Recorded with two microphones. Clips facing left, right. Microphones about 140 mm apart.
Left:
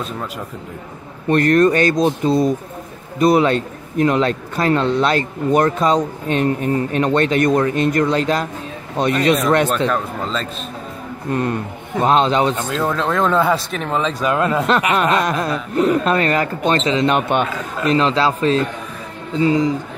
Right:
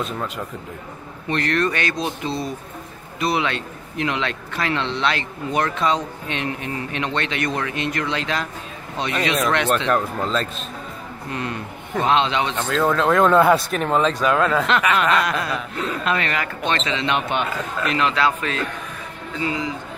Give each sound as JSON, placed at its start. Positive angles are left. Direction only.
{"t": 1.3, "sound": "a man's voice", "side_deg": 45}
{"t": 9.8, "sound": "speech", "side_deg": 0}
{"t": 11.3, "sound": "a man's voice", "side_deg": 45}
{"t": 12.5, "sound": "speech", "side_deg": 10}
{"t": 14.3, "sound": "speech", "side_deg": 15}
{"t": 14.7, "sound": "speech", "side_deg": 35}
{"t": 17.8, "sound": "speech", "side_deg": 30}